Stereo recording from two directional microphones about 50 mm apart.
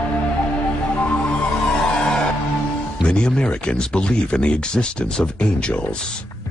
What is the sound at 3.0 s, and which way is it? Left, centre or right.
Speech, centre.